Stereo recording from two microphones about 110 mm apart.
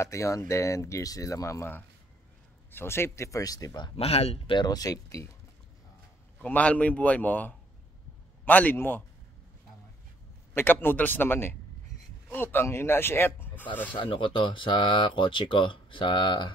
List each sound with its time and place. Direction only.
0.0 s speech: 30° left (ahead or behind)
3.9 s speech: 65° left (ahead or behind)
4.6 s speech: 35° left (ahead or behind)
6.4 s a man's voice: 15° left (ahead or behind)
10.5 s speech: 20° left (ahead or behind)
13.9 s speech: 50° left (ahead or behind)